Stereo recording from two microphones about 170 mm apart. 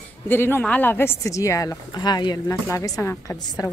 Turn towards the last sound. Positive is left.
turn(degrees=25)  # may be behind; listen again after turning